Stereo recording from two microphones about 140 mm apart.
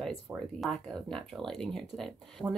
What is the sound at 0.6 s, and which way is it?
A woman's voice, 5° left (ahead or behind).